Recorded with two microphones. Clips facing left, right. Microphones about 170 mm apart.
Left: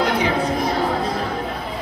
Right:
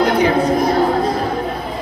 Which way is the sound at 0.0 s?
40° right (ahead or behind).